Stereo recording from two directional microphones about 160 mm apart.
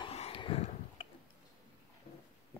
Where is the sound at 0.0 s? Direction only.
35° left (ahead or behind).